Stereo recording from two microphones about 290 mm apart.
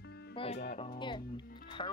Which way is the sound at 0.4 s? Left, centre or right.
Left.